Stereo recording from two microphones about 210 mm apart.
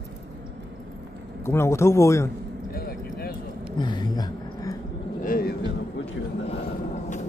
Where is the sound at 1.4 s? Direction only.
10° left (ahead or behind).